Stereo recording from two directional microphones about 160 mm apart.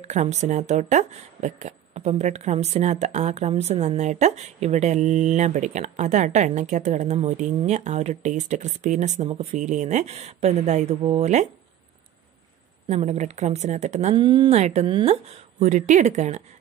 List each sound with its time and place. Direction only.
0.0 s speech: 45° right (ahead or behind)
12.8 s speech: 45° right (ahead or behind)
14.1 s speech: 30° right (ahead or behind)
14.6 s speech: 45° right (ahead or behind)